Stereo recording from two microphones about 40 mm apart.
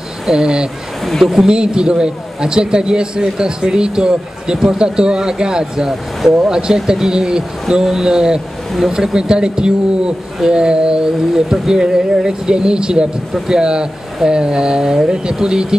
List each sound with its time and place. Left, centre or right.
0.3 s speech: centre